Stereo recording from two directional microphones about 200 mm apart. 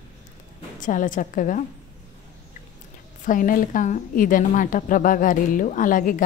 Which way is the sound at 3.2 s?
45° left (ahead or behind).